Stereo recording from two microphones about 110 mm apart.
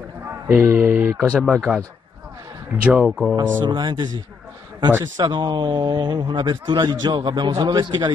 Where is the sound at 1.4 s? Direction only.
10° right (ahead or behind).